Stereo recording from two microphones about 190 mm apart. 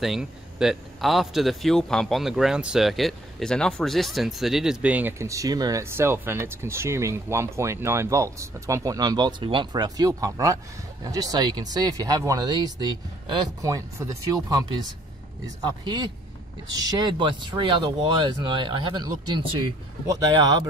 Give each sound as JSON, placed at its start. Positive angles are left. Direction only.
{"t": 0.0, "sound": "a man's voice", "side_deg": 0}